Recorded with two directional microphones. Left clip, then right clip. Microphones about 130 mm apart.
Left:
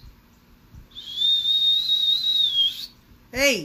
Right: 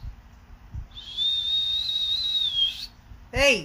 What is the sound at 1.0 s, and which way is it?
Whistle, 30° right (ahead or behind).